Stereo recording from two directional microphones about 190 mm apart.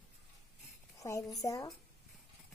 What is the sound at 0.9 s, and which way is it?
Speech, 15° left (ahead or behind).